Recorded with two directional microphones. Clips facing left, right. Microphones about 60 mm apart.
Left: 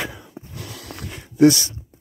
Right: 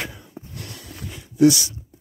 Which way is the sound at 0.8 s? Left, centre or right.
Left.